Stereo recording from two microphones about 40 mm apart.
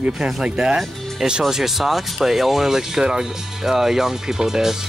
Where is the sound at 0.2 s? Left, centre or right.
Right.